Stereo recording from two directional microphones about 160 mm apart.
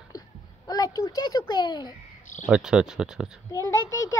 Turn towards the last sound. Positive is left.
turn(degrees=20)  # may be behind; listen again after turning